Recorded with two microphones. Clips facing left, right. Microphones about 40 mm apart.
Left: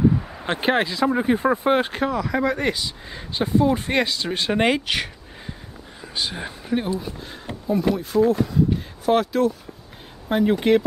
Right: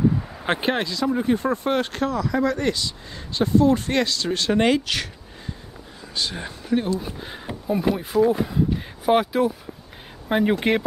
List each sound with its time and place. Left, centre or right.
0.0 s a sound: centre
0.6 s speech: centre
0.8 s speech: centre
6.1 s speech: centre
7.5 s speech: centre
8.3 s speech: centre